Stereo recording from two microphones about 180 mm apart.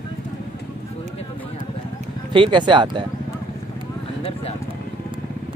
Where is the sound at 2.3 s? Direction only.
25° right (ahead or behind).